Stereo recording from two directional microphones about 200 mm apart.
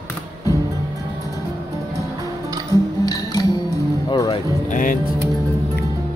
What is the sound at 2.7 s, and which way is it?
Music, 15° left (ahead or behind).